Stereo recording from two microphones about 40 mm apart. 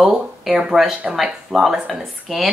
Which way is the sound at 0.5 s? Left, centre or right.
Centre.